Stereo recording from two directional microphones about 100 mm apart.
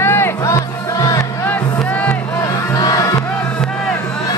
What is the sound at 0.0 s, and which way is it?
Music, 25° left (ahead or behind).